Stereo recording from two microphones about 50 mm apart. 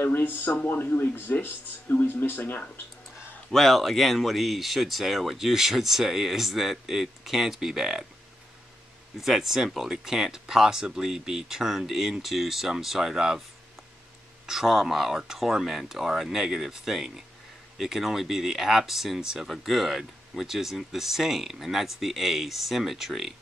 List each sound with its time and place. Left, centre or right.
0.0 s speech: left
3.5 s speech: centre
9.2 s speech: centre
14.4 s speech: centre